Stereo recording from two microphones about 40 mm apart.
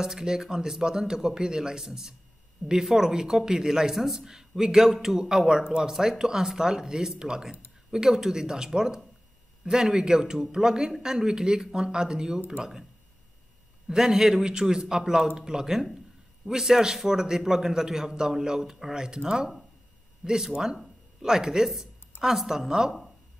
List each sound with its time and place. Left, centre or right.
0.0 s speech: centre
13.8 s speech: centre